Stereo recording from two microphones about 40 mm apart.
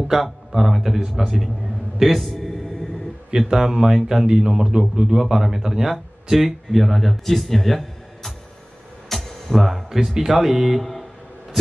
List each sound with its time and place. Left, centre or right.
0.1 s a man's voice: centre
2.4 s music: centre
3.3 s a man's voice: centre
5.2 s a man's voice: centre
9.1 s music: centre
9.8 s speech: centre